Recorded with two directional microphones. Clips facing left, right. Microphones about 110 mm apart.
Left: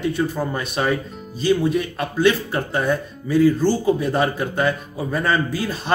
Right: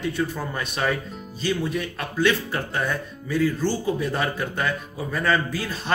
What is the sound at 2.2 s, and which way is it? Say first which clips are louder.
Speech: left 5 dB; 20° left (ahead or behind).